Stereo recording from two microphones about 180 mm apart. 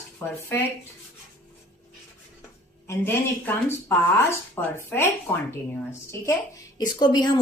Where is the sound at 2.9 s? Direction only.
10° left (ahead or behind).